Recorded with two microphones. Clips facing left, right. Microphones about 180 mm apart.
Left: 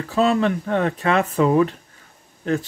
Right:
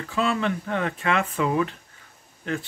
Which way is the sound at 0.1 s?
40° left (ahead or behind).